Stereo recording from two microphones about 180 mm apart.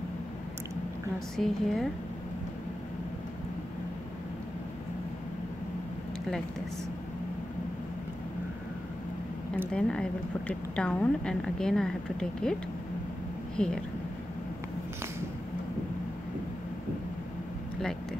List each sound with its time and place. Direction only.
1.3 s a woman's voice: centre (ahead or behind)
9.7 s a woman's voice: 5° left (ahead or behind)
13.6 s speech: 5° left (ahead or behind)